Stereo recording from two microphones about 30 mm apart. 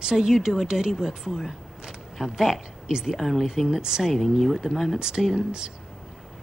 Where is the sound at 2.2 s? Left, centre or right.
Right.